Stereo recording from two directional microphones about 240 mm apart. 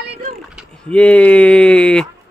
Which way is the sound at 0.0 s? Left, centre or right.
Right.